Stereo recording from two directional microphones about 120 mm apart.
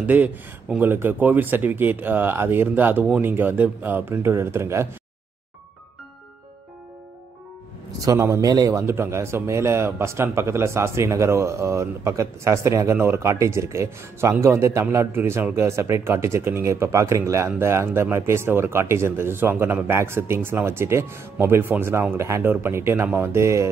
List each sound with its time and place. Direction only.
0.0 s speech: 15° right (ahead or behind)
8.0 s a man's voice: 25° right (ahead or behind)